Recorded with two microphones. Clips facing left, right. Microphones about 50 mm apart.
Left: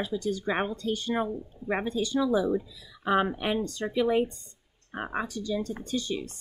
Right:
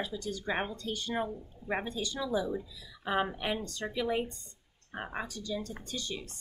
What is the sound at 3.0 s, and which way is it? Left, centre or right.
Speech, left.